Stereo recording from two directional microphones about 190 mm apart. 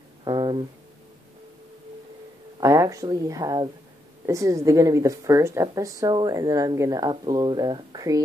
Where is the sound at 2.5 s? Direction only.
20° right (ahead or behind).